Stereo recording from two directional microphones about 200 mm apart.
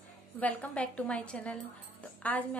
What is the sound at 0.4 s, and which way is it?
A woman's voice, 5° left (ahead or behind).